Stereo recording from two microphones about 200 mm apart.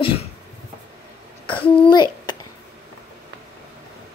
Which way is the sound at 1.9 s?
20° left (ahead or behind).